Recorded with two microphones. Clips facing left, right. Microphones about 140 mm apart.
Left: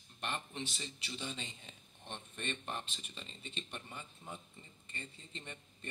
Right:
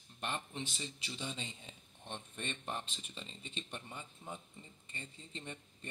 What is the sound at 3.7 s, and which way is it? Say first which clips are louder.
A man's voice: right 1 dB; 20° right (ahead or behind).